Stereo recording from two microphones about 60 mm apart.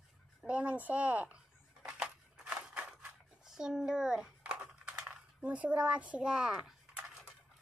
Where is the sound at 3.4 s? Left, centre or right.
Centre.